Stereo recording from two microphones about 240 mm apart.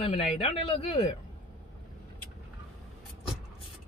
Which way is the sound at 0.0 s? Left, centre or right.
Left.